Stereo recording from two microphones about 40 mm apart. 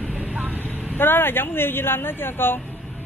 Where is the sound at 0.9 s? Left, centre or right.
Left.